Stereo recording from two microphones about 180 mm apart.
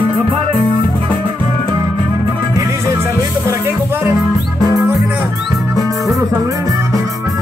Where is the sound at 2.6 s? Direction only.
15° right (ahead or behind).